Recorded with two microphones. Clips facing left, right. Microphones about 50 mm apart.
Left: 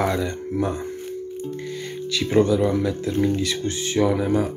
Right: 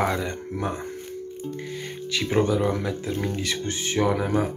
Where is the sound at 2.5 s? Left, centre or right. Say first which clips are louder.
Left 4 dB; right.